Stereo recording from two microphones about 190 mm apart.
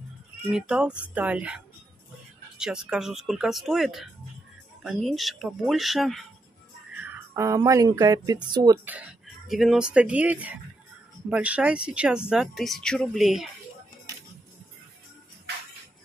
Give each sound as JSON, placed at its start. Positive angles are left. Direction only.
{"t": 0.5, "sound": "speech", "side_deg": -5}
{"t": 7.1, "sound": "speech", "side_deg": -15}
{"t": 9.5, "sound": "speech", "side_deg": 0}